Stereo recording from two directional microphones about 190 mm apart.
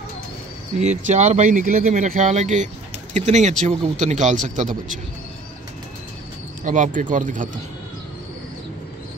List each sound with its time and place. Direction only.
0.7 s speech: 40° right (ahead or behind)
6.6 s speech: 40° right (ahead or behind)